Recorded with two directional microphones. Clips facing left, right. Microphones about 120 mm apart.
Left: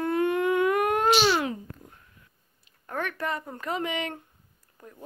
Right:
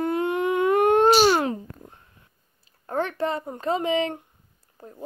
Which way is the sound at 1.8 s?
30° right (ahead or behind).